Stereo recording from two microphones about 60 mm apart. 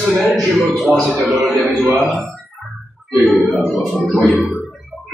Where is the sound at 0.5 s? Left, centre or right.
Centre.